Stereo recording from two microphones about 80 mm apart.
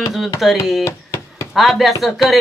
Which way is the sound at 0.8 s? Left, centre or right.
Left.